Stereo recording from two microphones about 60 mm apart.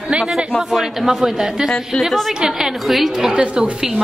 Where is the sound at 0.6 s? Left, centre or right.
Centre.